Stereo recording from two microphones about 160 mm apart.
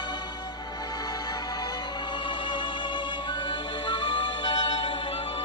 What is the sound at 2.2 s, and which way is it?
Music, 30° left (ahead or behind).